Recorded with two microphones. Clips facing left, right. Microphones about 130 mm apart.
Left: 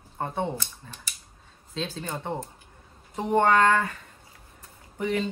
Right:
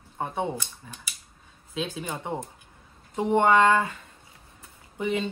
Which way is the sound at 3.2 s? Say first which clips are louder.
Right 1 dB; 15° right (ahead or behind).